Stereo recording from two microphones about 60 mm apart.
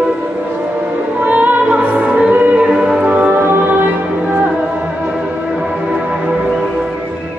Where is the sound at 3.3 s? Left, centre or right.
Right.